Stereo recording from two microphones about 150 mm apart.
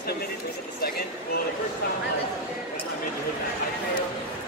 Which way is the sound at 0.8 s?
85° left.